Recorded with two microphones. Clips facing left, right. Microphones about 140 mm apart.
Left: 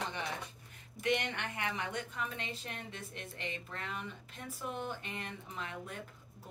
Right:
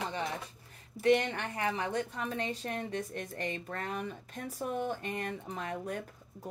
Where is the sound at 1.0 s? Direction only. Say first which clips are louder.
Right 7 dB; 35° right (ahead or behind).